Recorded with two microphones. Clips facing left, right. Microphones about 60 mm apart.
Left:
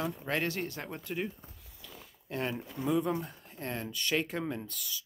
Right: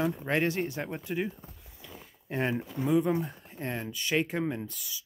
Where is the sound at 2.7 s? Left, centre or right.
Centre.